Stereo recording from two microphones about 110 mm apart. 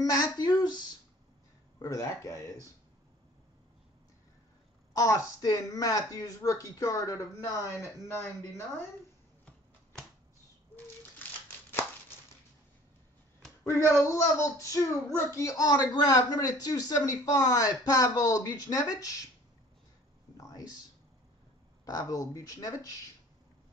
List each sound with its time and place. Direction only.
0.0 s speech: 35° left (ahead or behind)
1.8 s speech: 30° left (ahead or behind)
4.9 s speech: 30° left (ahead or behind)
13.7 s speech: 25° left (ahead or behind)
20.3 s a sound: 30° left (ahead or behind)
21.8 s speech: 30° left (ahead or behind)